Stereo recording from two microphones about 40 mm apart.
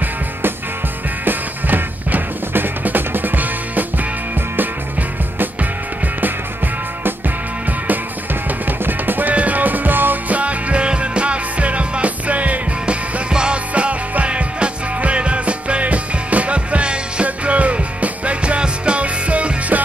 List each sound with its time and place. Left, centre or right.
1.2 s music: right
8.6 s music: right
9.3 s music: right
10.2 s music: right
12.8 s music: right